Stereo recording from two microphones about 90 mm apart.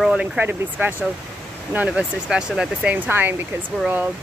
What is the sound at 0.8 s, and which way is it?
Speech, 25° right (ahead or behind).